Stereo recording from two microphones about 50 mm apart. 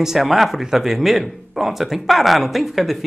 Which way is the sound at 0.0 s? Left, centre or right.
Centre.